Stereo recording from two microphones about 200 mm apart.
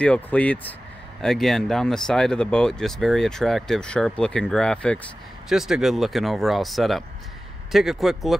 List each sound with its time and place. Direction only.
0.0 s speech: 5° left (ahead or behind)